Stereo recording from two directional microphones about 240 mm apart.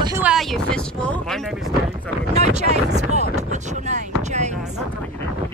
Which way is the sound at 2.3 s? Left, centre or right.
Right.